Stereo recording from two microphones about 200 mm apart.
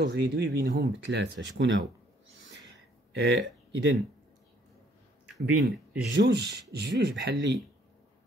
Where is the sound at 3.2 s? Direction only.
60° right (ahead or behind).